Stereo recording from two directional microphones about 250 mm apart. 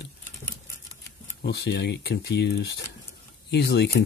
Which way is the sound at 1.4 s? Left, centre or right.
Left.